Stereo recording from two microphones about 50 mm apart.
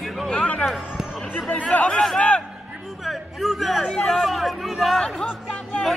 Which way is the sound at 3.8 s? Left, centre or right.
Centre.